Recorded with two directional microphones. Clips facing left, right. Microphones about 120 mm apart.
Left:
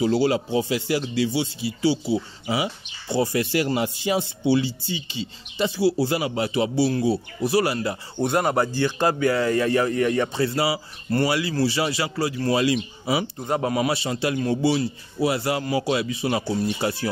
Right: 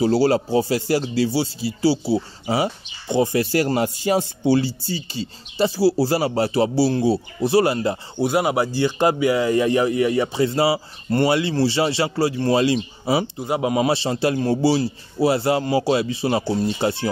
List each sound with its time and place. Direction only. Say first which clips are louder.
0.0 s speech: right 3 dB; 40° right (ahead or behind)
3.1 s speech: right 3 dB; 20° right (ahead or behind)
3.3 s speech: right 3 dB; 40° right (ahead or behind); by 8.0 s 25° right (ahead or behind)
8.2 s speech: right 1 dB; 5° right (ahead or behind)
10.5 s a man's voice: right 4 dB; 25° right (ahead or behind)
13.4 s speech: right 2 dB; 10° right (ahead or behind)
13.7 s a man's voice: right 4 dB; 30° right (ahead or behind)